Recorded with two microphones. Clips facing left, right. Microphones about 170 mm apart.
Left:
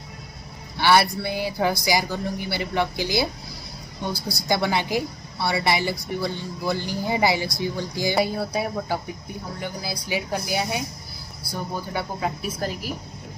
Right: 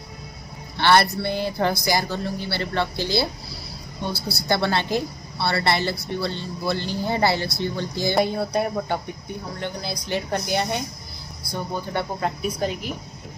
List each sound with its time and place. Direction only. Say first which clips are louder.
0.7 s a woman's voice: right 1 dB; 10° left (ahead or behind)